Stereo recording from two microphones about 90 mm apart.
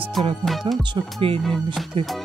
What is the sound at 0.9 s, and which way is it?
Speech, 90° right.